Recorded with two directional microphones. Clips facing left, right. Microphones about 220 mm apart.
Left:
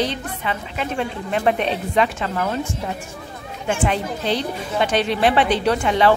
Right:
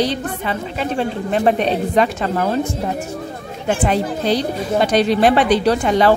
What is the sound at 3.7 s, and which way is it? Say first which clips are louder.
A woman's voice: right 4 dB; 40° right (ahead or behind).